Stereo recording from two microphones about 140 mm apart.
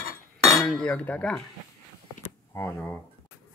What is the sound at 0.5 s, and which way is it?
Cutlery, centre (ahead or behind).